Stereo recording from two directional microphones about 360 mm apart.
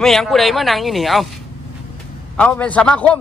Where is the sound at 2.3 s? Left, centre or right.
Centre.